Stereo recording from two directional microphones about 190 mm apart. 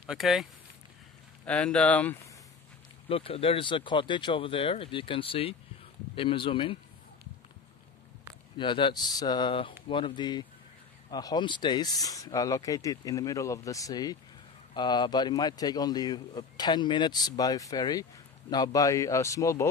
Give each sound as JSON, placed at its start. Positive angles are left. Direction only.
{"t": 0.0, "sound": "a man's voice", "side_deg": -5}
{"t": 3.1, "sound": "speech", "side_deg": 30}
{"t": 8.5, "sound": "a man's voice", "side_deg": 25}